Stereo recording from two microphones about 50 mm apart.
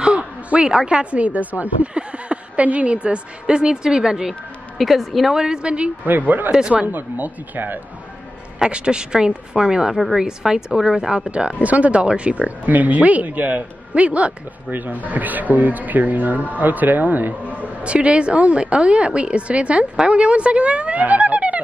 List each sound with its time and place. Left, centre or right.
0.0 s a woman's voice: right
4.7 s a woman's voice: centre
5.4 s speech: centre
6.0 s speech: right
8.6 s a woman's voice: right